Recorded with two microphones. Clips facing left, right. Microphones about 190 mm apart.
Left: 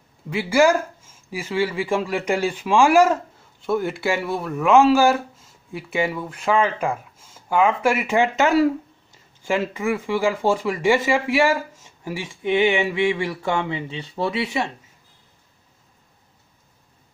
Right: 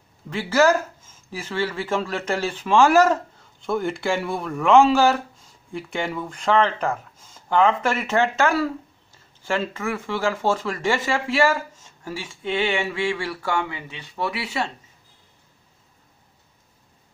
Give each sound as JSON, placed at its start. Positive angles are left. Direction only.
{"t": 0.3, "sound": "speech", "side_deg": 10}